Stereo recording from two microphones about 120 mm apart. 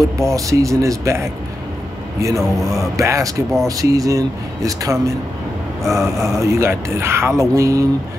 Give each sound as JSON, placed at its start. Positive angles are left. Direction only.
{"t": 0.2, "sound": "speech", "side_deg": -25}